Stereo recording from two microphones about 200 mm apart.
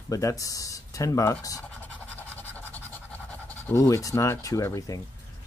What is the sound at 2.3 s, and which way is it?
Scratch, 10° left (ahead or behind).